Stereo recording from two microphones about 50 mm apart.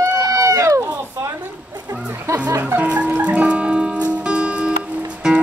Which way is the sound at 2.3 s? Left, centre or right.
Right.